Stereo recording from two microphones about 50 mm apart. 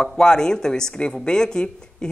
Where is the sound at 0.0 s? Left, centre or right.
Centre.